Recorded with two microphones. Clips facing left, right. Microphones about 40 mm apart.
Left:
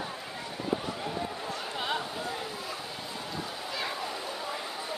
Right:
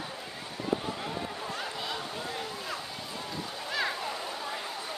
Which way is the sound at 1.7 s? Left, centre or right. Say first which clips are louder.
Left 4 dB; left.